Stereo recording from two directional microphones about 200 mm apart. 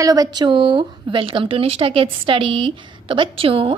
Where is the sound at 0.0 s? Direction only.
20° right (ahead or behind).